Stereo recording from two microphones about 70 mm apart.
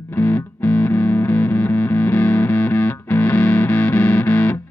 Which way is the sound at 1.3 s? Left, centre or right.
Left.